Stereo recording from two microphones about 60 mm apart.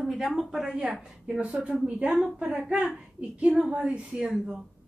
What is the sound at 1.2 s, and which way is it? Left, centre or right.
A woman's voice, centre.